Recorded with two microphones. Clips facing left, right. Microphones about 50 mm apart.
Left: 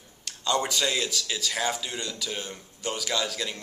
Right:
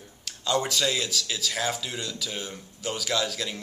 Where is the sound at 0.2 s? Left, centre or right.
Centre.